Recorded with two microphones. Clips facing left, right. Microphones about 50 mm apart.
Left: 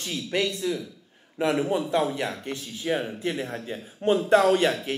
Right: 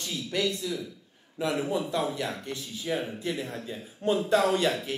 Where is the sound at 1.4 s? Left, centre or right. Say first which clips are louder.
Left 4 dB; left.